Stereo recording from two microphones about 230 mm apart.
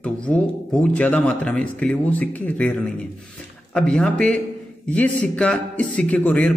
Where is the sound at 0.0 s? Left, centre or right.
Centre.